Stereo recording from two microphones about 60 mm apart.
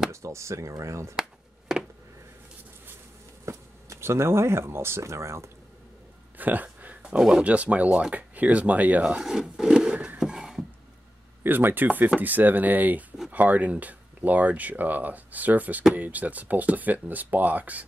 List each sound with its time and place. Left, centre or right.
0.1 s speech: right
1.7 s a sound: centre
3.4 s speech: right
6.3 s a sound: right
7.2 s speech: centre
7.4 s speech: right
9.0 s speech: centre
10.1 s a sound: centre
11.4 s speech: right